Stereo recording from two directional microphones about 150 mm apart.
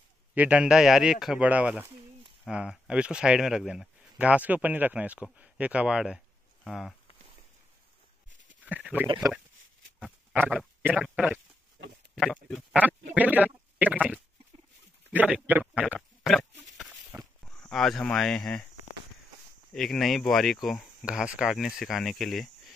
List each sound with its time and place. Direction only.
0.3 s a man's voice: 10° right (ahead or behind)
8.6 s speech: 10° right (ahead or behind)
9.0 s speech: 30° right (ahead or behind)
9.9 s pig: 5° right (ahead or behind)
10.5 s speech: 10° right (ahead or behind)
12.8 s a man's voice: 10° right (ahead or behind)
17.1 s a sound: 15° right (ahead or behind)
17.5 s speech: 5° left (ahead or behind)
19.7 s speech: 5° left (ahead or behind)